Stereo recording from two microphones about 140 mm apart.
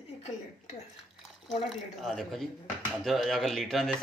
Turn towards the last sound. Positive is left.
turn(degrees=5)  # may be behind; listen again after turning